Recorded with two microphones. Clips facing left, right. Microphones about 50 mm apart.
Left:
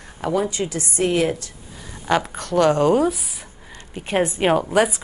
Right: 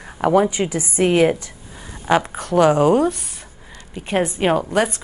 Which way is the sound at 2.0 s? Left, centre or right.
Centre.